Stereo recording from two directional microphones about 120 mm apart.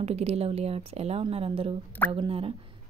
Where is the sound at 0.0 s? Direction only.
60° right (ahead or behind).